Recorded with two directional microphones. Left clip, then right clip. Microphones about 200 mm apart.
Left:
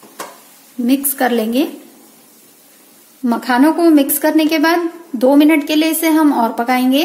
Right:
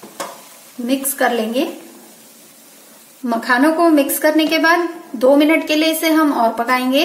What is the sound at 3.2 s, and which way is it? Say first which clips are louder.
A woman's voice: left 1 dB; 45° left (ahead or behind).